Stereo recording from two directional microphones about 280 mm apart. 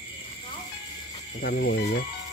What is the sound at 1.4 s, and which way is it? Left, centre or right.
Speech, left.